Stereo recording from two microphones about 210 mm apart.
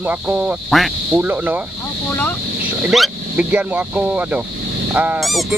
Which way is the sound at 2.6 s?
5° right (ahead or behind).